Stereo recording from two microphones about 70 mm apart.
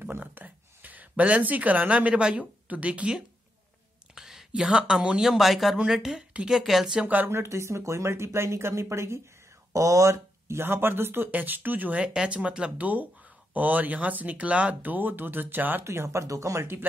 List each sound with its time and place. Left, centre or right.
0.0 s a sound: right
4.1 s a sound: centre
4.5 s speech: centre
7.0 s speech: right
7.2 s speech: right
10.6 s speech: right
15.8 s speech: right